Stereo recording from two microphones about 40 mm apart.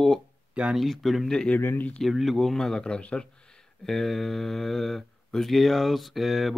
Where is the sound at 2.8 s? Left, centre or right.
Left.